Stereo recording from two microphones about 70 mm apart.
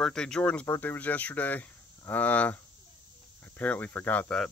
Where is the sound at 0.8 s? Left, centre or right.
Left.